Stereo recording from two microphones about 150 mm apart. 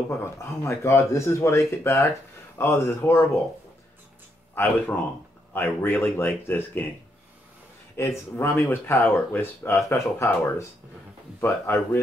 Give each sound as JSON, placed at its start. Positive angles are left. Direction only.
{"t": 0.1, "sound": "speech", "side_deg": 20}
{"t": 4.6, "sound": "speech", "side_deg": 15}
{"t": 8.0, "sound": "speech", "side_deg": 15}